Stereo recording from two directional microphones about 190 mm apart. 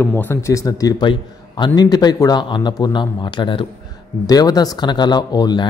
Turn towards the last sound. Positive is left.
turn(degrees=20)  # may be behind; listen again after turning